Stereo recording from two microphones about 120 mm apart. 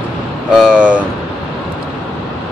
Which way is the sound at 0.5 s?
5° right (ahead or behind).